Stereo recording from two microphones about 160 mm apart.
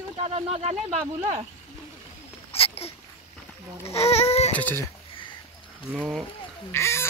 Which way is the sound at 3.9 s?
40° left (ahead or behind).